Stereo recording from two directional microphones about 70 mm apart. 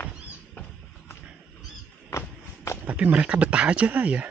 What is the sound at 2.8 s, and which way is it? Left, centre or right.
Speech, right.